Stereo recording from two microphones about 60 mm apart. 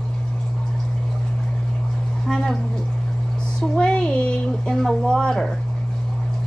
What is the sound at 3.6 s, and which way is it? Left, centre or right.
A woman's voice, centre.